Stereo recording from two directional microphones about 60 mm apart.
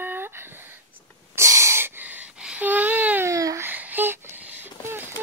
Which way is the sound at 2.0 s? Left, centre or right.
Right.